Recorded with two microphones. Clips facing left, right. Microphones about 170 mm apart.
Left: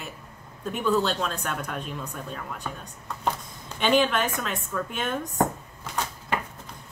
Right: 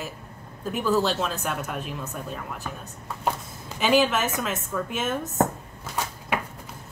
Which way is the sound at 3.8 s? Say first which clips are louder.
Right 1 dB; 5° right (ahead or behind).